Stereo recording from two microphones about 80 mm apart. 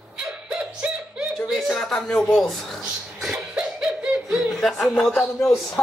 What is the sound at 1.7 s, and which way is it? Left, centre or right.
Speech, centre.